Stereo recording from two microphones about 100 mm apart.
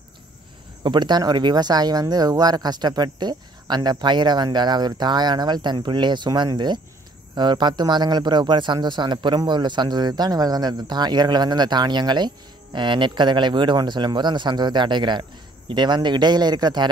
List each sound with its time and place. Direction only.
0.8 s speech: 45° right (ahead or behind)